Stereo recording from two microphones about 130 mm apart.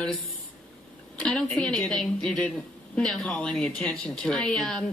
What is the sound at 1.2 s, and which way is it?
Speech, 5° left (ahead or behind).